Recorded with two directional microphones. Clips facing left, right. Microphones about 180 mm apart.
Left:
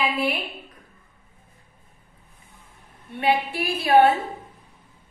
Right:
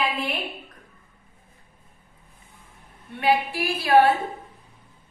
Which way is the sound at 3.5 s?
20° left (ahead or behind).